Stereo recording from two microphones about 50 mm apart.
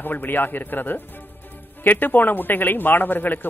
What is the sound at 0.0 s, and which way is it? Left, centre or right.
Speech, left.